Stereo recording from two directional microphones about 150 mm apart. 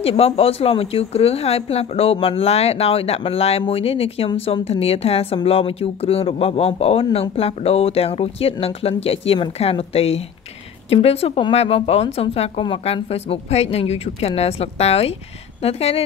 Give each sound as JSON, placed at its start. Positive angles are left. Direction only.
{"t": 0.0, "sound": "speech", "side_deg": 40}